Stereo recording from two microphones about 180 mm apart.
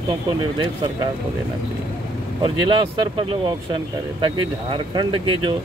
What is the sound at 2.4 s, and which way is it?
Speech, 30° right (ahead or behind).